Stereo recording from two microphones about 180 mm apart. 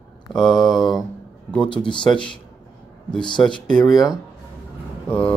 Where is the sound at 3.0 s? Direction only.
25° left (ahead or behind).